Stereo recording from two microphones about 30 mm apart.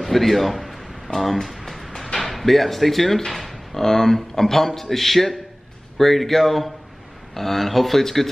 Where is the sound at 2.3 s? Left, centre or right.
Centre.